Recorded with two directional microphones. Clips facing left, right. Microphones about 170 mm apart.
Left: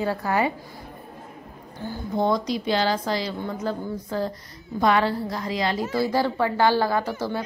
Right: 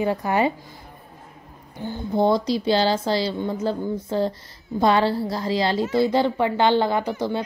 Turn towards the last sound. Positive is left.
turn(degrees=-20)  # may be behind; listen again after turning